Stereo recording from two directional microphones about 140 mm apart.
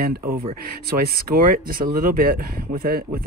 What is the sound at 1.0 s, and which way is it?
Speech, 85° right.